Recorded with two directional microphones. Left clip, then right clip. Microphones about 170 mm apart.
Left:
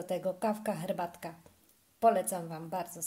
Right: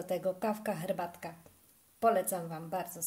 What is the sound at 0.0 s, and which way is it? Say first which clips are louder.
A woman's voice: even; 5° left (ahead or behind).